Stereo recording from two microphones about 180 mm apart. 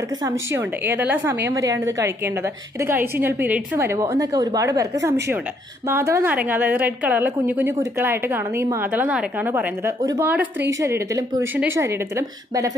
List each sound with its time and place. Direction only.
0.2 s a woman's voice: 15° right (ahead or behind)